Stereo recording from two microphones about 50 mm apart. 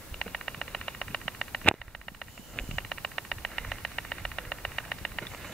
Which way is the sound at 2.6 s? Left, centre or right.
Centre.